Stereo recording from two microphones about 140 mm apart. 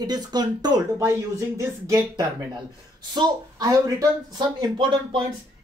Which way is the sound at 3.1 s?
25° right (ahead or behind).